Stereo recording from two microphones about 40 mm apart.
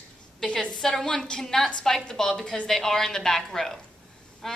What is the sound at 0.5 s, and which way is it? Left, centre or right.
Speech, left.